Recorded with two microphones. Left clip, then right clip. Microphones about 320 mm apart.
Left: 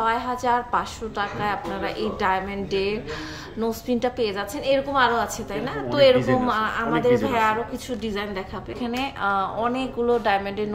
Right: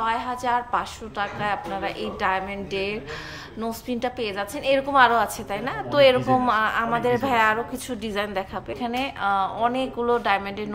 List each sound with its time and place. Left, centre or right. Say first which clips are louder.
0.0 s a woman's voice: left 2 dB; centre